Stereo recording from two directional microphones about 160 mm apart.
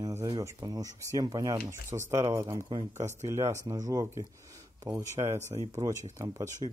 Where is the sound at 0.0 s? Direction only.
20° right (ahead or behind).